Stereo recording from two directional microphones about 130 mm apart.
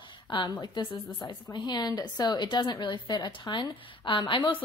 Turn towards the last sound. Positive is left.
turn(degrees=40)  # may be behind; listen again after turning